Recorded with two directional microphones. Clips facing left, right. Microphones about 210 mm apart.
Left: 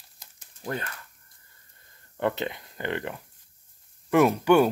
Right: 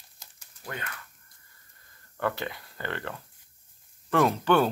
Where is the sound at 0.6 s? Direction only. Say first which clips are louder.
Left 6 dB; 35° left (ahead or behind).